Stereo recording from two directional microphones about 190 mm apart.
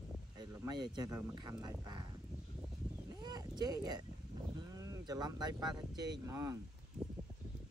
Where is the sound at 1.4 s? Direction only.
20° right (ahead or behind).